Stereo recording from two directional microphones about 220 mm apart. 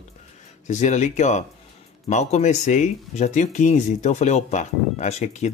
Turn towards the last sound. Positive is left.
turn(degrees=30)  # may be behind; listen again after turning